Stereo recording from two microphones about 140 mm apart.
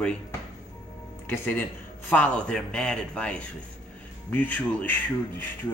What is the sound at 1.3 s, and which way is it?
A man's voice, 15° left (ahead or behind).